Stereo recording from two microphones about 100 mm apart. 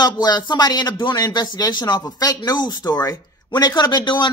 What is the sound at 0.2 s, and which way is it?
Speech, 45° left (ahead or behind).